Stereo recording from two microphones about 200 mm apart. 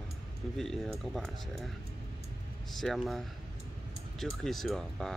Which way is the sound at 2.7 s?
Centre (ahead or behind).